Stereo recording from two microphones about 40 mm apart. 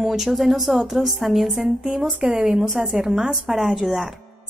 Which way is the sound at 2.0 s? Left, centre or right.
Right.